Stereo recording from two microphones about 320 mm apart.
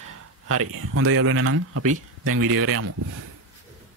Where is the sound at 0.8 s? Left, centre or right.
Right.